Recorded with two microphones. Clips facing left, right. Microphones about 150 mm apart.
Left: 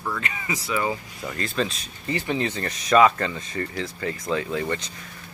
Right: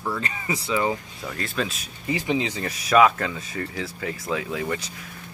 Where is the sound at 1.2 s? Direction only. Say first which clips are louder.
Left 5 dB; centre (ahead or behind).